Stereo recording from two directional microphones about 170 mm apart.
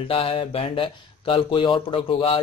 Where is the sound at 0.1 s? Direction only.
35° left (ahead or behind).